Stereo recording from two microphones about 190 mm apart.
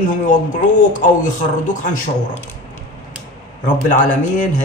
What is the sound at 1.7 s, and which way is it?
Speech, 40° left (ahead or behind).